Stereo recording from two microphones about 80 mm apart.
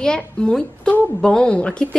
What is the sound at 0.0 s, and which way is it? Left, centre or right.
A woman's voice, centre.